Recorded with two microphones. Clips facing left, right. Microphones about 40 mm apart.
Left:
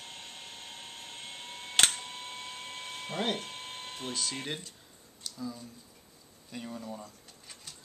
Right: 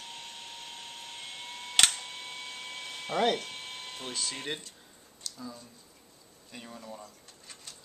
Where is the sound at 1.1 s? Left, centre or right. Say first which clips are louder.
Right 1 dB; right.